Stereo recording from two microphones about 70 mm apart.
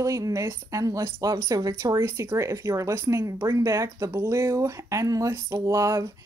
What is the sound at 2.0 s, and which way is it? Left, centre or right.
Speech, right.